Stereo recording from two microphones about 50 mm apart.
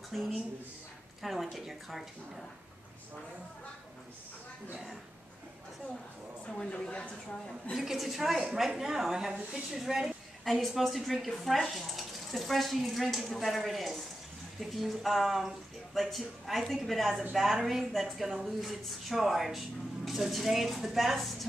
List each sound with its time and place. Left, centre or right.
0.1 s a woman's voice: centre
6.4 s a woman's voice: centre
7.7 s a woman's voice: centre